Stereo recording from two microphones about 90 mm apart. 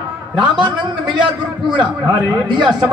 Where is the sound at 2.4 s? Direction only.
60° right (ahead or behind).